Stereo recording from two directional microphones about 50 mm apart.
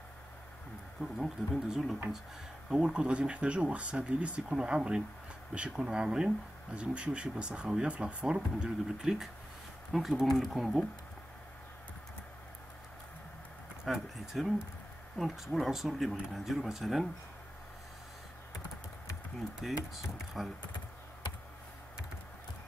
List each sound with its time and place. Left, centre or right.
1.1 s speech: centre
2.7 s speech: centre
10.2 s speech: centre
10.5 s speech: centre
13.8 s speech: centre
19.6 s speech: centre